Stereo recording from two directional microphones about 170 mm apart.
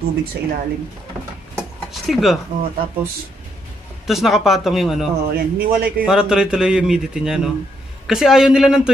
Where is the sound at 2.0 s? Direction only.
Centre (ahead or behind).